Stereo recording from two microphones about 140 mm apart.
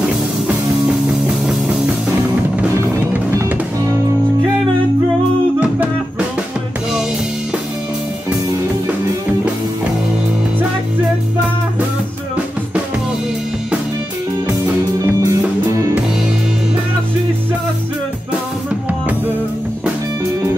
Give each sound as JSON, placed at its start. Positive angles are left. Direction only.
{"t": 1.2, "sound": "music", "side_deg": -5}
{"t": 2.7, "sound": "music", "side_deg": -15}
{"t": 5.6, "sound": "music", "side_deg": -10}
{"t": 15.0, "sound": "music", "side_deg": -20}